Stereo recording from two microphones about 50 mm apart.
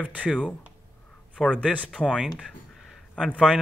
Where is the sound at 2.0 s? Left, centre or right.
Left.